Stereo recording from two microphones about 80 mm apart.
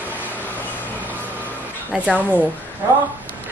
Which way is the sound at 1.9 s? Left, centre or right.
Centre.